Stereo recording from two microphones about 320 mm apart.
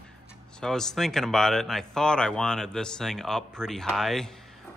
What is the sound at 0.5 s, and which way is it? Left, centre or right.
Speech, centre.